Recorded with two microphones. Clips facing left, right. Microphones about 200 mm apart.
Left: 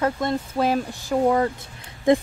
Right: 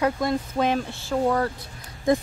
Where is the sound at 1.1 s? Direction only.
15° left (ahead or behind).